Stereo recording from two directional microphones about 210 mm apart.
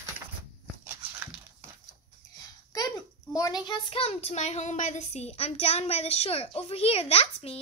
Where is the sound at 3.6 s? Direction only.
25° left (ahead or behind).